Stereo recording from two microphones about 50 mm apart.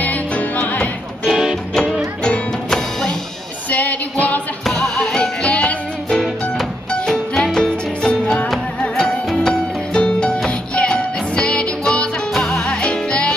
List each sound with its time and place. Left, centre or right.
0.0 s music: left
1.3 s music: centre
2.7 s music: centre
3.7 s music: left
4.6 s music: centre
5.5 s music: left
7.1 s music: centre
12.8 s music: left